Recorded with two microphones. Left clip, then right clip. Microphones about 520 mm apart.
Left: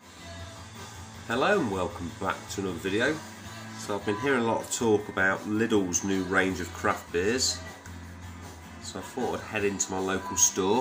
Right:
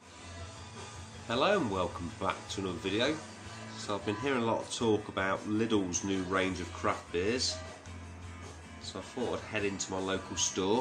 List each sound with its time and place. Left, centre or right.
1.2 s speech: right
9.5 s speech: right